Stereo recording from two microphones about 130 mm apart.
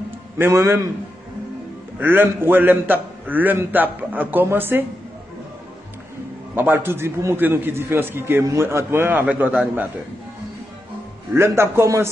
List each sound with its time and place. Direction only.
0.4 s a man's voice: 20° right (ahead or behind)
2.0 s a man's voice: 15° right (ahead or behind)
6.5 s a man's voice: 15° right (ahead or behind)
11.3 s a man's voice: 20° right (ahead or behind)